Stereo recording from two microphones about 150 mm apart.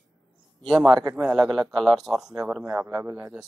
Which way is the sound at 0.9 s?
25° right (ahead or behind).